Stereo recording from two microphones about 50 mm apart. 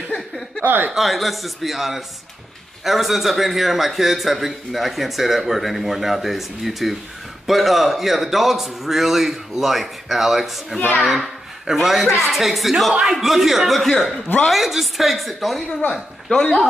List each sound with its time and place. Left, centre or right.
0.7 s speech: right
0.9 s a man's voice: centre
16.3 s speech: centre